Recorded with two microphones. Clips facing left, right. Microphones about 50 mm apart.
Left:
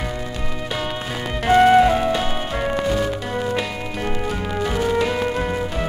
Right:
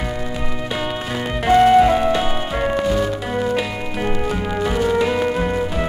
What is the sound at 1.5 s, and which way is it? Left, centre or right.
Music, centre.